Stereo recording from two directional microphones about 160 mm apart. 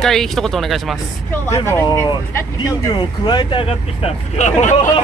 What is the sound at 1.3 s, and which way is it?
Speech, 15° left (ahead or behind).